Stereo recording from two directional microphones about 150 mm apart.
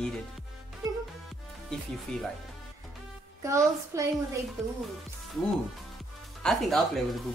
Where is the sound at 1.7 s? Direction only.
5° left (ahead or behind).